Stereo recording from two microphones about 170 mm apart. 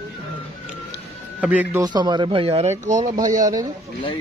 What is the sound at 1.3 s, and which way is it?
Speech, 10° right (ahead or behind).